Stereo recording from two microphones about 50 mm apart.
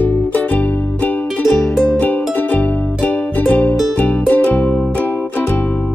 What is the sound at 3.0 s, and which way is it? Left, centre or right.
Music, left.